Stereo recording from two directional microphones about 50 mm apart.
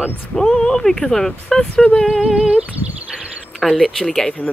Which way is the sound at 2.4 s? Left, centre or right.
Right.